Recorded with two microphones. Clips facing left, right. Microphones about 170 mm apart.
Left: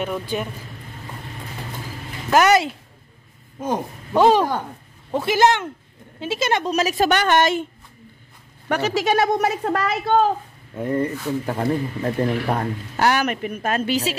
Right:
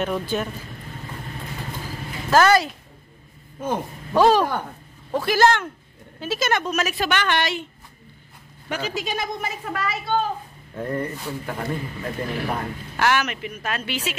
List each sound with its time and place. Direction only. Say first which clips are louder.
0.0 s speech: right 1 dB; 10° left (ahead or behind)
2.3 s a man's voice: left 1 dB; 20° left (ahead or behind); by 7.6 s 45° left (ahead or behind)
8.6 s speech: left 7 dB; 70° left (ahead or behind)
10.8 s speech: left 4 dB; 15° left (ahead or behind)
11.4 s a woman's voice: left 5 dB; 35° left (ahead or behind)